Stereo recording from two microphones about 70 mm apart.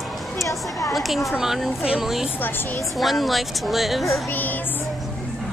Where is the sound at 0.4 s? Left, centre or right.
Left.